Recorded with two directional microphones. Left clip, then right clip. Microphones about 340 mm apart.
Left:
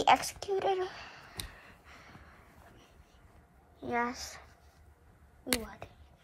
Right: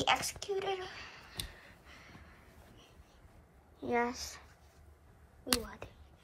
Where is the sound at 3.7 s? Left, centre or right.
Centre.